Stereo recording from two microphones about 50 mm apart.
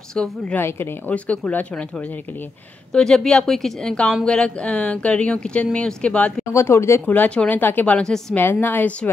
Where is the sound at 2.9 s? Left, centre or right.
Centre.